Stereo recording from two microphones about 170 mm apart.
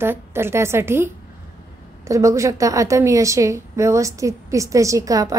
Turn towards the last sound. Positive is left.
turn(degrees=-20)  # may be behind; listen again after turning